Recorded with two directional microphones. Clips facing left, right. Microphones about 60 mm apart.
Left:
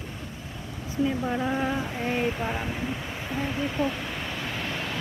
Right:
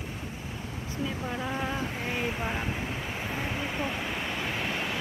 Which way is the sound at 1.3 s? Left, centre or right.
Centre.